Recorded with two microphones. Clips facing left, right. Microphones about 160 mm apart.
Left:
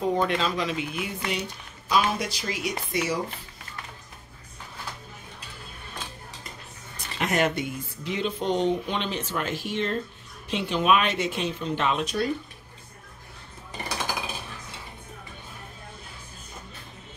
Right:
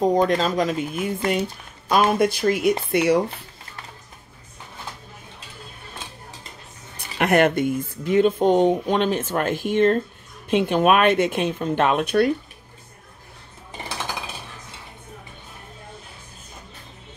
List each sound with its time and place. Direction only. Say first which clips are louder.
0.0 s speech: right 6 dB; 40° right (ahead or behind); by 3.2 s 60° right (ahead or behind)
7.2 s speech: right 7 dB; 60° right (ahead or behind)